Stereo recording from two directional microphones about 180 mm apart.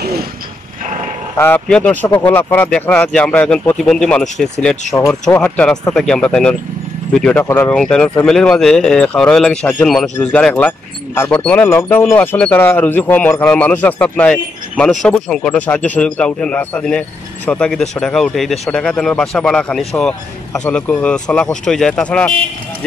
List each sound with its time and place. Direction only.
0.0 s mechanisms: 60° right (ahead or behind)
1.4 s speech: 10° left (ahead or behind)